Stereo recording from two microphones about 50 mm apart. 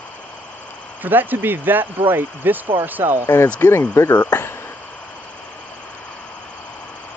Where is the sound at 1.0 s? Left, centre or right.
Right.